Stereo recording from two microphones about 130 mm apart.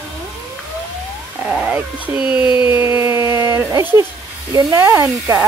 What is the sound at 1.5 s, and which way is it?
Speech, 10° right (ahead or behind).